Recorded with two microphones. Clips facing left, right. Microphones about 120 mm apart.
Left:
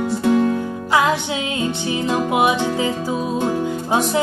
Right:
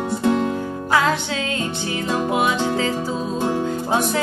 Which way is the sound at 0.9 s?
15° left (ahead or behind).